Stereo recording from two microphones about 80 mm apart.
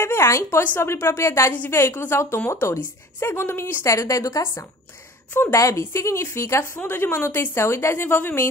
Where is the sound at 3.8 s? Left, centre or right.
Left.